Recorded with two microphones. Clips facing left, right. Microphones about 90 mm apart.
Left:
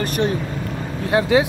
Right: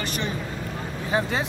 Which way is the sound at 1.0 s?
75° left (ahead or behind).